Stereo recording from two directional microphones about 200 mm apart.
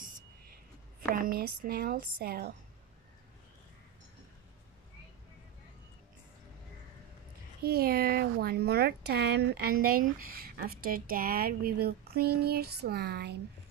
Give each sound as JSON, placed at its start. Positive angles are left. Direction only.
{"t": 1.1, "sound": "speech", "side_deg": -45}
{"t": 7.6, "sound": "speech", "side_deg": -50}